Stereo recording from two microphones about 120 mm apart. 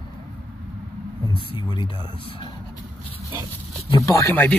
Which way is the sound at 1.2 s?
35° left (ahead or behind).